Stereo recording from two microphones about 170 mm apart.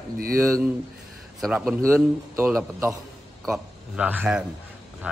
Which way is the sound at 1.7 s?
15° right (ahead or behind).